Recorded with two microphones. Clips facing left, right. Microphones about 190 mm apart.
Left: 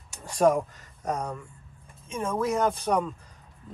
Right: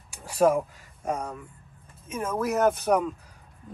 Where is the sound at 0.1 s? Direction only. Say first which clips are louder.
Even; 5° right (ahead or behind).